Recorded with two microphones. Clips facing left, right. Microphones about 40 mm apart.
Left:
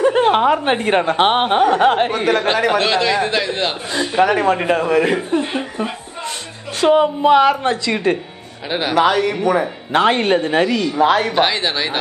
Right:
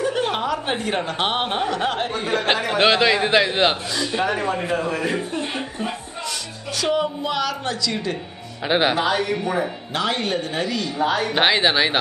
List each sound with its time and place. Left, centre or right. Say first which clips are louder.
0.0 s a woman's voice: left 9 dB; left
2.8 s a man's voice: even; centre
3.9 s a woman's voice: left 4 dB; left
4.2 s a man's voice: left 10 dB; left
5.3 s speech: left 7 dB; left
6.8 s a woman's voice: left 9 dB; left
8.6 s a man's voice: right 2 dB; centre
8.9 s a man's voice: left 7 dB; left
9.4 s speech: left 6 dB; left
9.9 s a woman's voice: left 9 dB; left
11.0 s a man's voice: left 7 dB; left
11.3 s a man's voice: even; centre